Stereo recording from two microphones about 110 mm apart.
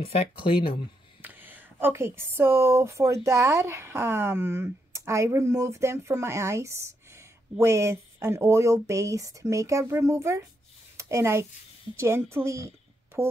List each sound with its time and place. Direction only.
0.0 s speech: 65° left (ahead or behind)
1.2 s a child's voice: 15° right (ahead or behind)